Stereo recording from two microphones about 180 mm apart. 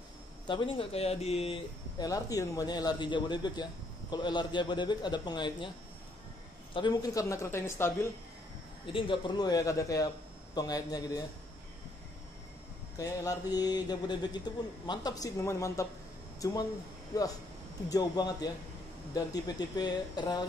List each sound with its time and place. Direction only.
0.5 s speech: 30° left (ahead or behind)
2.0 s a man's voice: 20° left (ahead or behind)
6.7 s a woman's voice: 25° left (ahead or behind)
8.8 s a man's voice: 30° left (ahead or behind)
12.9 s a man's voice: 20° left (ahead or behind)
17.1 s a man's voice: 20° left (ahead or behind)